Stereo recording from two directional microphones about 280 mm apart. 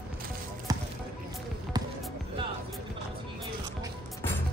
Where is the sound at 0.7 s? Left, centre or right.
Centre.